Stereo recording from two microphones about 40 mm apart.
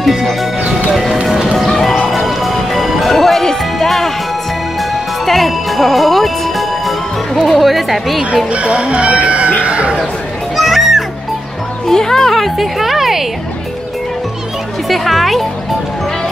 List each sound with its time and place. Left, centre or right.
0.0 s speech: centre
1.3 s music: centre
1.7 s music: centre
5.2 s music: centre
8.5 s speech: right
10.5 s music: centre
11.9 s speech: centre
14.9 s a child's voice: centre